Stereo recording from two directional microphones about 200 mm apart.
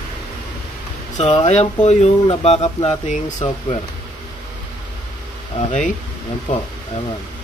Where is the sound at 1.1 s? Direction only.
35° left (ahead or behind).